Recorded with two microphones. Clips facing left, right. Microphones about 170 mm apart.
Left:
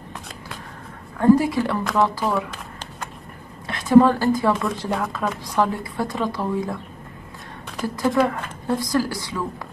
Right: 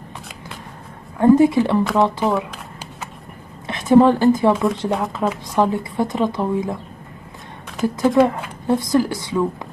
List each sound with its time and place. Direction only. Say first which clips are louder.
1.2 s a woman's voice: right 4 dB; 20° right (ahead or behind)
3.6 s a woman's voice: right 1 dB; 20° right (ahead or behind)
7.8 s a woman's voice: right 5 dB; 20° right (ahead or behind)